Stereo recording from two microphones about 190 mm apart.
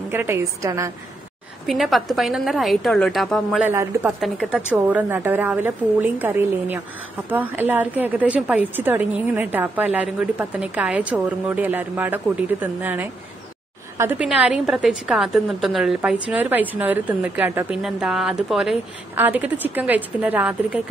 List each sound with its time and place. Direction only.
0.1 s a woman's voice: 10° right (ahead or behind)
1.7 s a woman's voice: centre (ahead or behind)